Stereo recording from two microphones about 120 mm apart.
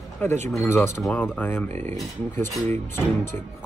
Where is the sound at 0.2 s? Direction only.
15° left (ahead or behind).